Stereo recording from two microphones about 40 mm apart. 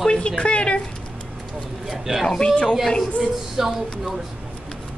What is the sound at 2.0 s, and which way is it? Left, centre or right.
Speech, centre.